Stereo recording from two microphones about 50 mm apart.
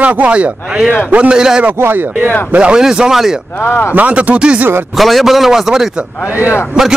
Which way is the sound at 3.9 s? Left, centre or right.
Right.